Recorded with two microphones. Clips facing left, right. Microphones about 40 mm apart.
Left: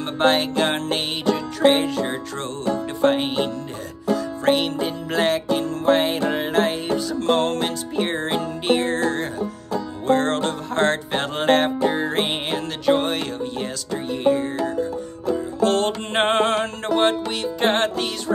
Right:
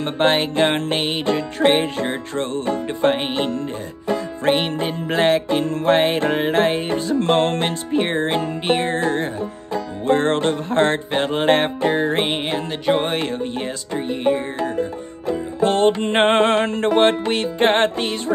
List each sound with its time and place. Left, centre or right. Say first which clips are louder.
0.0 s music: right 1 dB; right
12.3 s music: right 2 dB; centre
12.8 s music: even; centre